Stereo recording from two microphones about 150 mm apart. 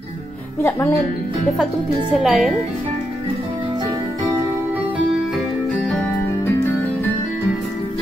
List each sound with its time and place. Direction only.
0.6 s speech: 20° left (ahead or behind)
2.2 s a woman's voice: centre (ahead or behind)